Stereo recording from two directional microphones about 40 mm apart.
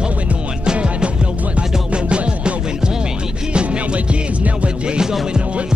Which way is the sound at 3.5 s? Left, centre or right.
Right.